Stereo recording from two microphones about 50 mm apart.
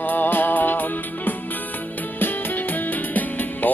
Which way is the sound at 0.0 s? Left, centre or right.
Left.